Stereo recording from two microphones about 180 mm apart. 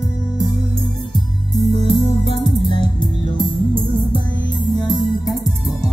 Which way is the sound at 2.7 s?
25° left (ahead or behind).